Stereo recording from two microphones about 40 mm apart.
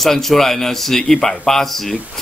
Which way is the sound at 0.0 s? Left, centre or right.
Centre.